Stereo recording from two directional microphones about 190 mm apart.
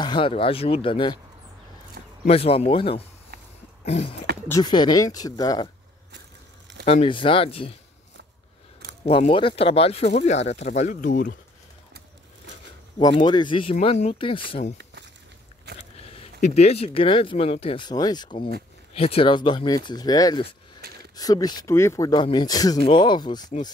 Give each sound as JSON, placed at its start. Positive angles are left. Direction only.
{"t": 0.0, "sound": "speech", "side_deg": 25}
{"t": 2.2, "sound": "speech", "side_deg": 30}
{"t": 3.8, "sound": "a sound", "side_deg": 35}
{"t": 4.5, "sound": "speech", "side_deg": 20}
{"t": 6.9, "sound": "speech", "side_deg": 30}
{"t": 9.0, "sound": "speech", "side_deg": 30}
{"t": 13.0, "sound": "speech", "side_deg": 25}
{"t": 16.0, "sound": "speech", "side_deg": 35}